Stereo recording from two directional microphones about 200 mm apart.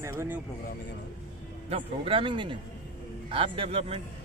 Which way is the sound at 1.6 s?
25° right (ahead or behind).